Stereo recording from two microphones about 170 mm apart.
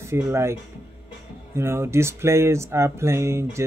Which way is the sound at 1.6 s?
15° right (ahead or behind).